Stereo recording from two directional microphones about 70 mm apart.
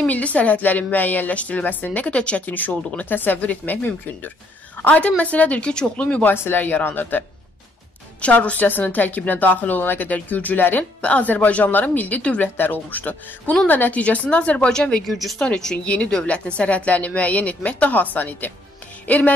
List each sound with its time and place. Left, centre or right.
0.0 s a woman's voice: centre
6.3 s a woman's voice: left; by 15.0 s centre
15.0 s speech: centre
15.4 s a woman's voice: centre